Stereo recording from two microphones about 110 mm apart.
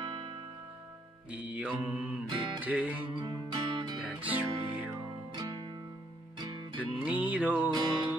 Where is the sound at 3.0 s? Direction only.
50° right (ahead or behind).